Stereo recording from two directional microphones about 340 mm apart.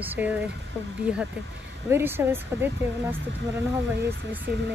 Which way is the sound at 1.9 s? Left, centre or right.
Centre.